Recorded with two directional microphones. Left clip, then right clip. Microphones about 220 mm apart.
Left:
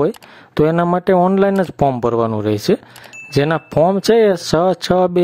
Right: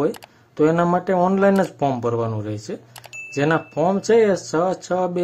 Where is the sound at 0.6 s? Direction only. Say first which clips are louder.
Left 3 dB; 40° left (ahead or behind).